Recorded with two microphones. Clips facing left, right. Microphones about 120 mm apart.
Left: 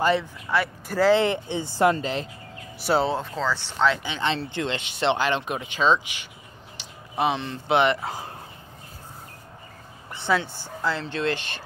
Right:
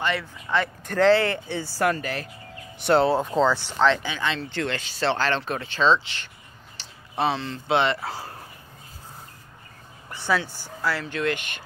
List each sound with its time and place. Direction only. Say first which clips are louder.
0.2 s speech: even; 10° left (ahead or behind)
1.1 s speech: left 1 dB; 20° left (ahead or behind)
2.8 s speech: right 3 dB; centre (ahead or behind)
3.2 s speech: right 6 dB; 15° right (ahead or behind)
4.0 s speech: left 1 dB; 25° left (ahead or behind)
10.1 s speech: left 1 dB; 20° left (ahead or behind)